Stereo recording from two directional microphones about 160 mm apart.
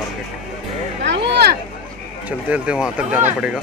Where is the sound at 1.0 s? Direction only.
90° right.